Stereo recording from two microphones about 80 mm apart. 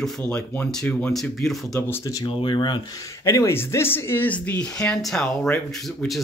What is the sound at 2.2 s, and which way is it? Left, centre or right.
Speech, left.